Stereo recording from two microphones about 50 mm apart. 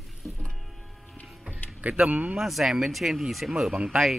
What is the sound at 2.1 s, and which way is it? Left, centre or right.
Speech, right.